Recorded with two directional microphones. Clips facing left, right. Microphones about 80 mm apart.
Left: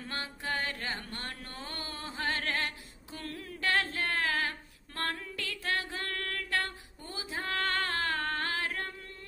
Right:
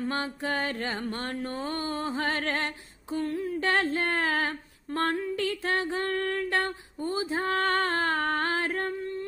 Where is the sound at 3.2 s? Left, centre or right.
Right.